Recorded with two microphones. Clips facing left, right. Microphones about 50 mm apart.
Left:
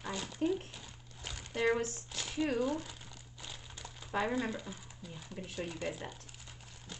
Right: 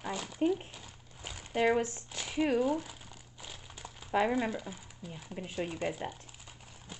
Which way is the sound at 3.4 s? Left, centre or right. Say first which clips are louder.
Right 1 dB; centre.